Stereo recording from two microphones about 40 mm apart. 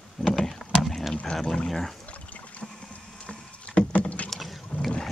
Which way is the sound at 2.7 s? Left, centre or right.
Left.